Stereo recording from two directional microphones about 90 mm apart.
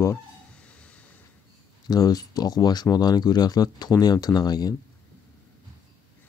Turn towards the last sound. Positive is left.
turn(degrees=45)  # may be behind; listen again after turning